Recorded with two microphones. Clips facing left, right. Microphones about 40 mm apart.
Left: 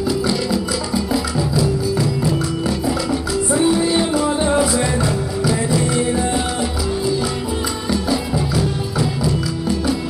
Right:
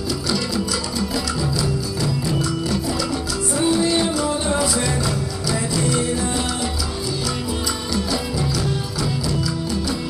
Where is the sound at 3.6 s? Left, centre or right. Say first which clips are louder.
Left 1 dB; left.